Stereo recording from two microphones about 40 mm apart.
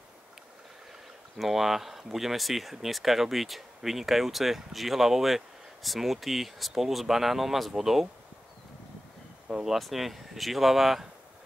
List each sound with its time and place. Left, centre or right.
1.4 s speech: centre
9.5 s speech: centre
9.8 s speech: centre